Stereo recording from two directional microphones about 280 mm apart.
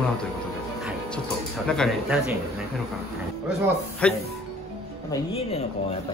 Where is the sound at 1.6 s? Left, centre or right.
Centre.